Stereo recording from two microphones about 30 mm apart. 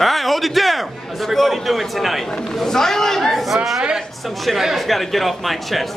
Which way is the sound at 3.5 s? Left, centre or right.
Centre.